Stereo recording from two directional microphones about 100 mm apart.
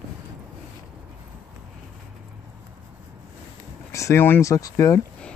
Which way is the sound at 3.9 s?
30° left (ahead or behind).